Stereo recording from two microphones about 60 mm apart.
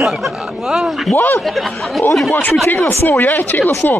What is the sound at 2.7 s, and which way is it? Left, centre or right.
Speech, left.